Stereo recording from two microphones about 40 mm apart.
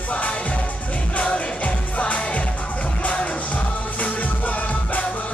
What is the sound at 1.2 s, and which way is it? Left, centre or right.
Music, left.